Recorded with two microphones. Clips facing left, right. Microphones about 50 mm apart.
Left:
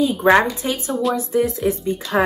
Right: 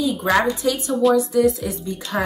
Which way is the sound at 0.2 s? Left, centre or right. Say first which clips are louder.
Left 4 dB; left.